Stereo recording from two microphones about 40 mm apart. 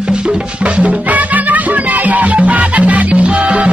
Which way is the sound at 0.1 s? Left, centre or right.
Right.